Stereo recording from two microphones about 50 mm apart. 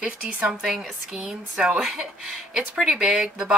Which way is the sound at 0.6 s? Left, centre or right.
Centre.